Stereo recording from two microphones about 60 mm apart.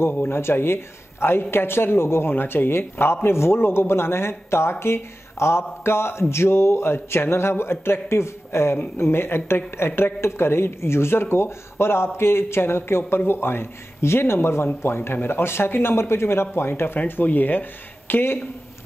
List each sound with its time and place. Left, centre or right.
0.3 s speech: left